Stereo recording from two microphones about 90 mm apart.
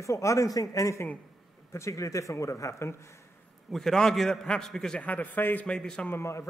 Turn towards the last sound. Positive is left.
turn(degrees=30)  # may be behind; listen again after turning